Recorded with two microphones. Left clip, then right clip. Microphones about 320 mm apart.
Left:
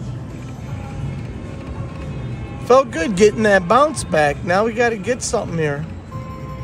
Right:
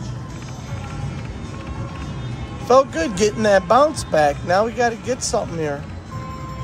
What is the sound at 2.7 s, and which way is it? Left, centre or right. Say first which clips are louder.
Speech: left 1 dB; left.